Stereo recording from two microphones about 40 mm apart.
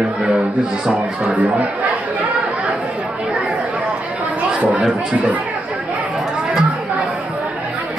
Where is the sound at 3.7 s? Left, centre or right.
Right.